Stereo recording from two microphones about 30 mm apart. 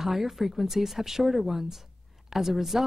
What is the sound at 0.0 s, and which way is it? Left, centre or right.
A woman's voice, centre.